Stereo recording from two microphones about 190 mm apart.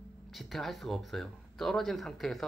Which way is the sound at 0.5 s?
Centre (ahead or behind).